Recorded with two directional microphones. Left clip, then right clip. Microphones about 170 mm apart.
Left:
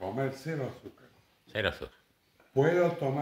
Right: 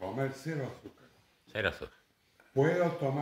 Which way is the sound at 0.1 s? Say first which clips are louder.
Left 2 dB; 15° left (ahead or behind).